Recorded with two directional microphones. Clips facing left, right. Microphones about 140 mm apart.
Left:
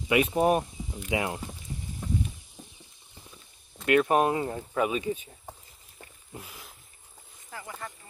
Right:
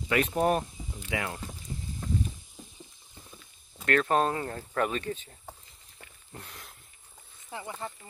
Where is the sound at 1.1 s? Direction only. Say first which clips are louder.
Left 4 dB; 20° left (ahead or behind).